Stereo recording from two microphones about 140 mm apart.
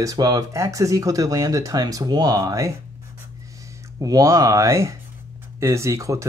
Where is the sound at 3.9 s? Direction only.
25° right (ahead or behind).